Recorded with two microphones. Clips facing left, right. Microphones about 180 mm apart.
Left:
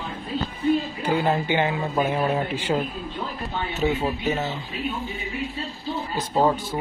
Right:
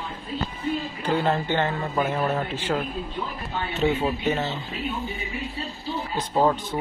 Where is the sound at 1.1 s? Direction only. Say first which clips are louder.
Even; 10° left (ahead or behind).